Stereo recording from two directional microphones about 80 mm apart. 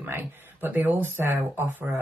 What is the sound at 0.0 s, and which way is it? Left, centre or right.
Speech, right.